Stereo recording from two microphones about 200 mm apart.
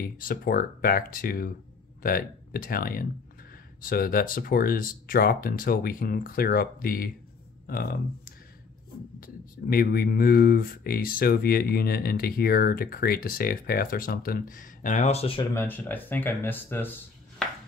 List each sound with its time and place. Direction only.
0.2 s speech: 45° left (ahead or behind); by 15.4 s 30° left (ahead or behind)
15.5 s speech: 10° left (ahead or behind)